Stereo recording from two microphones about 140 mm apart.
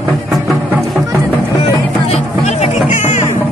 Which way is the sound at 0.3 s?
Centre (ahead or behind).